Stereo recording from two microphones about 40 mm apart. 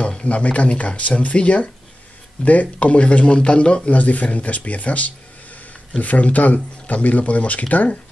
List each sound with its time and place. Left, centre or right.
0.1 s speech: left
3.9 s speech: left